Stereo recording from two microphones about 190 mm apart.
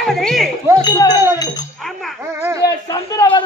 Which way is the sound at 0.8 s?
20° left (ahead or behind).